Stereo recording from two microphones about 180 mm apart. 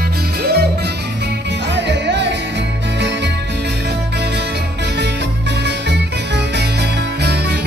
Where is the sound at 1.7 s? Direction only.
75° right (ahead or behind).